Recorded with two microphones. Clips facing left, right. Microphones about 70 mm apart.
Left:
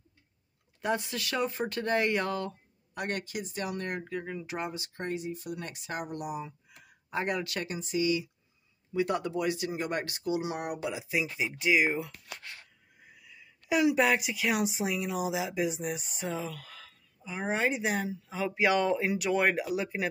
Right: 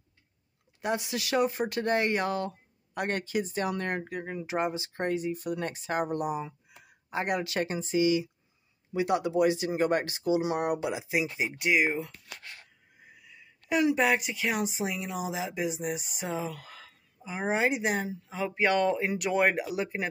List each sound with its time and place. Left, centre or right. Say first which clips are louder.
0.7 s speech: even; centre
2.9 s speech: right 4 dB; right
5.0 s speech: right 5 dB; right
5.7 s speech: right 7 dB; right
6.7 s a sound: even; centre
7.3 s speech: right 4 dB; right
7.7 s speech: right 4 dB; right
8.9 s speech: right 3 dB; centre
11.5 s speech: even; centre
16.2 s speech: right 2 dB; centre